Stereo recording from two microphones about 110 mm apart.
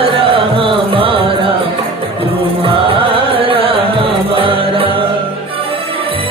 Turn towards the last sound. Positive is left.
turn(degrees=-55)  # may be behind; listen again after turning